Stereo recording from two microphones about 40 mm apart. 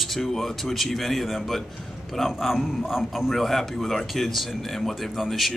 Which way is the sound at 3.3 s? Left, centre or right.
Centre.